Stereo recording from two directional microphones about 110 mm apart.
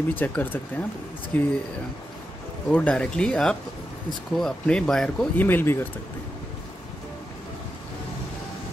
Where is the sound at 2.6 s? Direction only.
15° left (ahead or behind).